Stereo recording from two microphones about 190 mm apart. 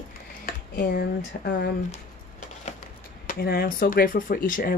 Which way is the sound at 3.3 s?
50° left (ahead or behind).